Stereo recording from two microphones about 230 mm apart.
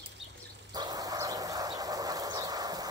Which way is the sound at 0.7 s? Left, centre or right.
Centre.